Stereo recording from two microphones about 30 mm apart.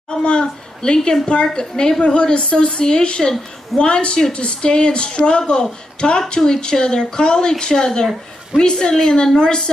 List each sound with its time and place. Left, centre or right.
0.1 s a woman's voice: left
2.0 s a woman's voice: left